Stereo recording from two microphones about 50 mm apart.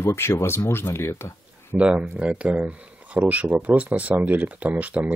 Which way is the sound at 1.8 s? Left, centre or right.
Right.